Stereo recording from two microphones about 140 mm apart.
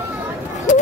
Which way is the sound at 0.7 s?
65° left (ahead or behind).